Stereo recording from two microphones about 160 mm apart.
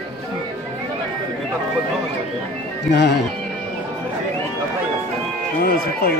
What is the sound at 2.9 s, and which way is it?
Speech, 90° left.